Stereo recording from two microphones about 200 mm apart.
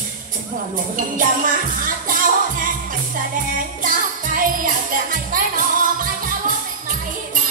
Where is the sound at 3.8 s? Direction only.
45° right (ahead or behind).